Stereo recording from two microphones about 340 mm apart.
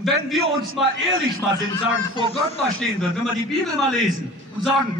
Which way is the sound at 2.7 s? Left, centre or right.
Centre.